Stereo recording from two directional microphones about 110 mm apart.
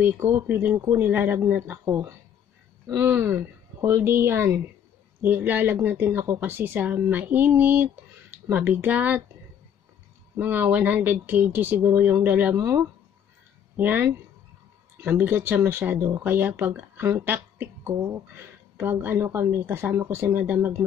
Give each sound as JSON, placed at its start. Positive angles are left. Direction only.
{"t": 0.0, "sound": "a woman's voice", "side_deg": -20}
{"t": 10.3, "sound": "a woman's voice", "side_deg": -20}